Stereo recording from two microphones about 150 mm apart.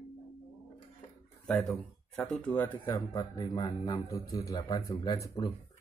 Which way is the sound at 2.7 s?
30° left (ahead or behind).